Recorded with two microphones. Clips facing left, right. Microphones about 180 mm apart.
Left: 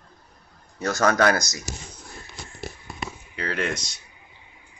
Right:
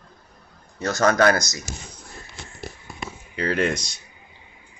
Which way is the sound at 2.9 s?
Centre (ahead or behind).